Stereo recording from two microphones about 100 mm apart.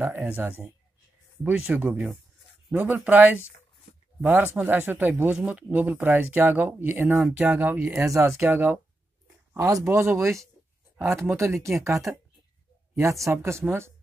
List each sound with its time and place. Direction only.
0.0 s speech: 15° right (ahead or behind)
8.0 s speech: 30° right (ahead or behind)
9.5 s speech: 30° right (ahead or behind)